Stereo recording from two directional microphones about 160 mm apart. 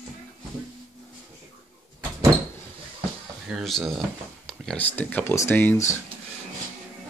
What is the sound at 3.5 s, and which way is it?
Speech, centre (ahead or behind).